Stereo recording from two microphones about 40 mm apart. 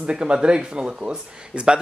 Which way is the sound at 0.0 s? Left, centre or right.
Right.